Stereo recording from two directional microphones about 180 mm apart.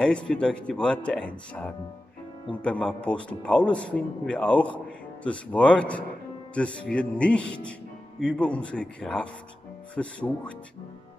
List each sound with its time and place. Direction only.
0.0 s a man's voice: 5° left (ahead or behind)